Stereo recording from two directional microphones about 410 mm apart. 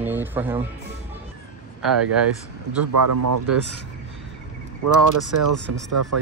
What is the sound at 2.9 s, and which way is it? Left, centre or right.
Speech, right.